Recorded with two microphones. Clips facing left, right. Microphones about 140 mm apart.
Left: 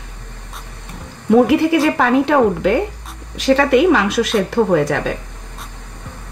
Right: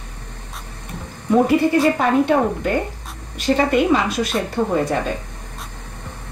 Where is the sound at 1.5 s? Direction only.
90° left.